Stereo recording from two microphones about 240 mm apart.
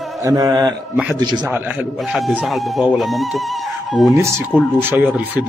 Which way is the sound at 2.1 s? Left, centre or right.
Centre.